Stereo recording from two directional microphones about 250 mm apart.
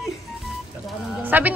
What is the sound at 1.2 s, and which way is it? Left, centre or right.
Speech, centre.